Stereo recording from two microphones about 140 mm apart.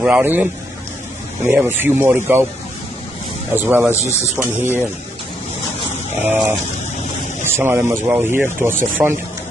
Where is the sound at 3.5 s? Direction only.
15° right (ahead or behind).